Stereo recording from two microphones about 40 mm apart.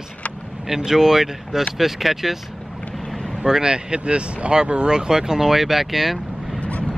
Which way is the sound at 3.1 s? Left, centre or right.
Centre.